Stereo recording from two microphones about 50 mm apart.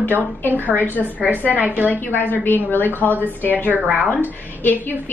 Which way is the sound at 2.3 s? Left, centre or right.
Left.